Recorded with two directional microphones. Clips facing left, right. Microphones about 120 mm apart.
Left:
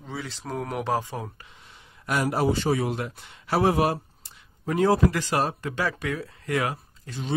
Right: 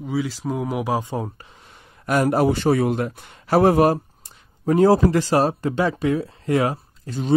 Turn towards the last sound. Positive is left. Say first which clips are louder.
# right 7 dB
turn(degrees=-35)  # may be behind; listen again after turning